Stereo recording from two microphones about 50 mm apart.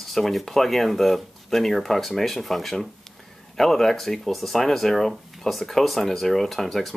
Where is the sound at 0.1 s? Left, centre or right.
Centre.